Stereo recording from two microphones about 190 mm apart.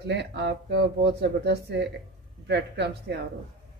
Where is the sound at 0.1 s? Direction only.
65° right (ahead or behind).